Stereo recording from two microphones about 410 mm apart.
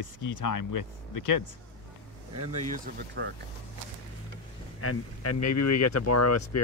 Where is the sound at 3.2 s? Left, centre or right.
Right.